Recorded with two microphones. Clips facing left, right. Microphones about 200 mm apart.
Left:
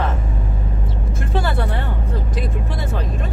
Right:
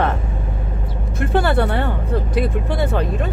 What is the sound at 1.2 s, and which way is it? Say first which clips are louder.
Speech: right 6 dB; 60° right (ahead or behind).